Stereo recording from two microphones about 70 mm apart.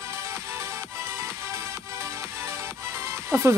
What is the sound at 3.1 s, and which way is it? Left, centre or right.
Music, right.